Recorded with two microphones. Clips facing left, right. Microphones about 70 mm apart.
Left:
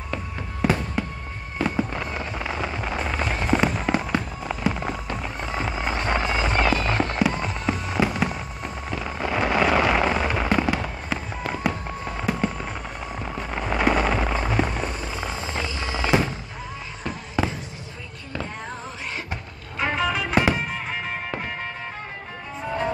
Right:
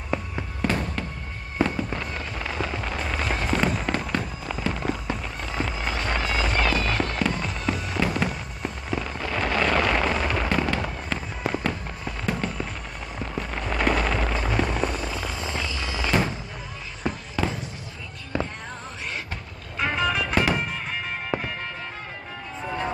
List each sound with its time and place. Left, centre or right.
0.6 s fireworks: centre
5.1 s music: centre
7.4 s fireworks: centre
9.2 s fireworks: centre
14.4 s a sound: centre
15.0 s vehicle: centre
19.8 s music: centre
21.3 s music: centre